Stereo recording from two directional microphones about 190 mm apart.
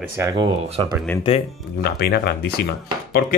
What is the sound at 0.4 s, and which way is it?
Speech, 25° right (ahead or behind).